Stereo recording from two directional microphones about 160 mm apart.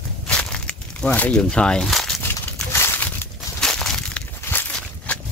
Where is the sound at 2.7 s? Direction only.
15° left (ahead or behind).